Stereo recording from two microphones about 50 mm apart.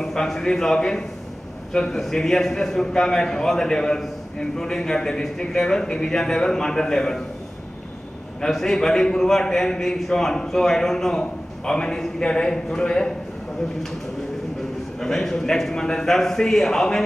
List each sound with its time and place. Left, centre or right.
0.0 s a man's voice: centre
8.4 s a man's voice: centre
15.0 s a man's voice: centre